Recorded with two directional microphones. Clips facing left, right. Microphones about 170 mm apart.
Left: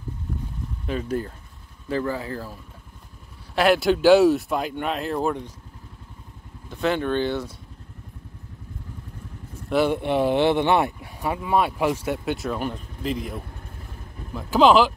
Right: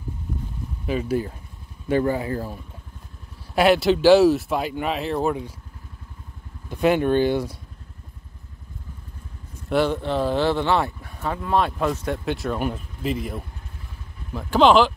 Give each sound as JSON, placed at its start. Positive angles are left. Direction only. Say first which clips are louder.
{"t": 0.8, "sound": "speech", "louder": "right 3 dB", "side_deg": -5}
{"t": 1.9, "sound": "speech", "louder": "right 5 dB", "side_deg": -20}
{"t": 3.5, "sound": "speech", "louder": "right 2 dB", "side_deg": -5}
{"t": 6.7, "sound": "speech", "louder": "right 4 dB", "side_deg": -15}
{"t": 9.7, "sound": "speech", "louder": "even", "side_deg": 0}
{"t": 9.9, "sound": "speech", "louder": "left 2 dB", "side_deg": 15}